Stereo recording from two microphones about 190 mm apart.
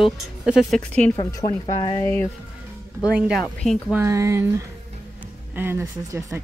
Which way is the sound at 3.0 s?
5° right (ahead or behind).